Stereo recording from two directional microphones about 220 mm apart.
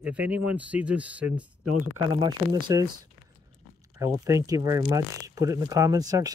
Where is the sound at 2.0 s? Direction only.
20° right (ahead or behind).